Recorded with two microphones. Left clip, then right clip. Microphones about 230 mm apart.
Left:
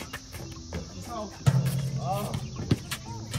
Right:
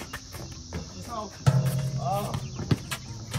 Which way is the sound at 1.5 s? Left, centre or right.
Centre.